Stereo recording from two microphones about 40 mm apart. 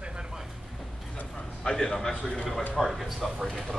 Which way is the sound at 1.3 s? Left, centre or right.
Centre.